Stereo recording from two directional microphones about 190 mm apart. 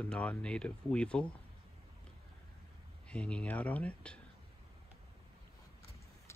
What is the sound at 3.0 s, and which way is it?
Speech, 5° left (ahead or behind).